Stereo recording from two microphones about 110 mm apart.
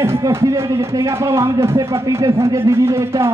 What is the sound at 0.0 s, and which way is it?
Speech, 25° right (ahead or behind).